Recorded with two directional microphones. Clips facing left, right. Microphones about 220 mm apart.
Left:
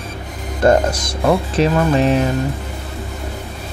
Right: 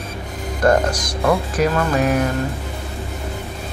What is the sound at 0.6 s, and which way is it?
Speech, 25° left (ahead or behind).